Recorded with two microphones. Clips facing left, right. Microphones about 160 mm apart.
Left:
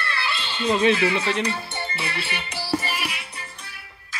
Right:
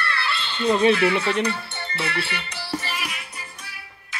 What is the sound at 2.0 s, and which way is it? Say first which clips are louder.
Speech: right 7 dB; 60° right (ahead or behind).